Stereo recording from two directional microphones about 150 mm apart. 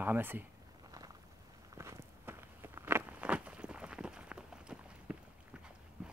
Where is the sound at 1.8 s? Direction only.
15° right (ahead or behind).